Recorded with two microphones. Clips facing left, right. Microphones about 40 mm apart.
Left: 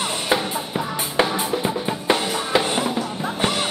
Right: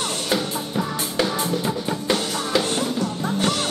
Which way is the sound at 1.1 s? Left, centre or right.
Left.